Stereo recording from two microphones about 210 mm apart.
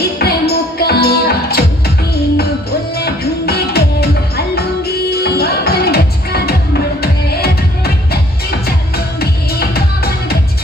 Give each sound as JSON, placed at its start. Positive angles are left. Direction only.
{"t": 0.2, "sound": "music", "side_deg": 50}
{"t": 3.0, "sound": "music", "side_deg": 50}